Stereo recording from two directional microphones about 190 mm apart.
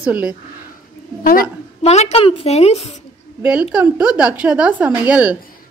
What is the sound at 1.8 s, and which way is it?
A woman's voice, 35° left (ahead or behind).